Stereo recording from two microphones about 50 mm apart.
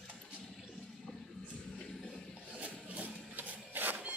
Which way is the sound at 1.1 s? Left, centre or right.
Centre.